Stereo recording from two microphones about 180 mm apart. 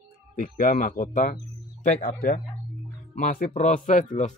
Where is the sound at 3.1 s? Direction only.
50° left (ahead or behind).